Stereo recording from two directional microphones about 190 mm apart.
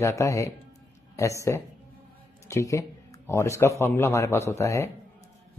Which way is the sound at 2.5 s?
15° left (ahead or behind).